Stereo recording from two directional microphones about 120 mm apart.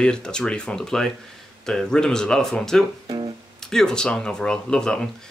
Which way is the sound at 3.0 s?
40° right (ahead or behind).